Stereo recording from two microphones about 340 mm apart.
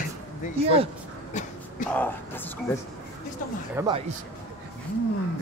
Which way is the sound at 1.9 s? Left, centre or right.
Centre.